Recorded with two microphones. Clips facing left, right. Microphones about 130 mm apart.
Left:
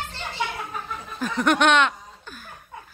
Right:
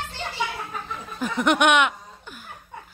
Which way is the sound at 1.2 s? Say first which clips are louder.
Even; 20° right (ahead or behind).